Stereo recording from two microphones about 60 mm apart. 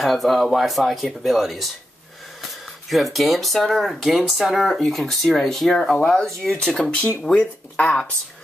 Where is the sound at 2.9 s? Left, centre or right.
Centre; by 8.0 s left.